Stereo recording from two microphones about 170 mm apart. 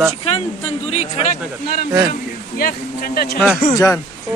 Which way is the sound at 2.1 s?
55° left (ahead or behind).